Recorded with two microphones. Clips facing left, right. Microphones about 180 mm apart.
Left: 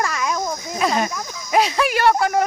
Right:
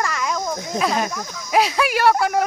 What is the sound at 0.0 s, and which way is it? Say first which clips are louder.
Cricket: left 1 dB; 10° left (ahead or behind).